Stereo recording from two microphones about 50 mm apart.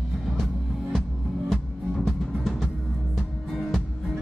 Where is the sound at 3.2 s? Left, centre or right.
Centre.